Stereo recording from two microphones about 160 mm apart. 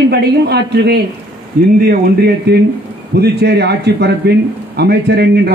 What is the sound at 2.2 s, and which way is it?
Speech, 85° right.